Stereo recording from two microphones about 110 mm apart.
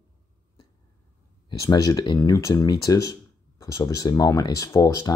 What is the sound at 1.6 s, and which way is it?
Speech, 35° left (ahead or behind).